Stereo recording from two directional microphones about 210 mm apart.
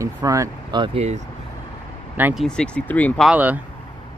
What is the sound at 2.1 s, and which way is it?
Speech, 10° right (ahead or behind).